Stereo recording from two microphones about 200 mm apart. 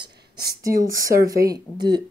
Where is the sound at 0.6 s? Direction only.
15° right (ahead or behind).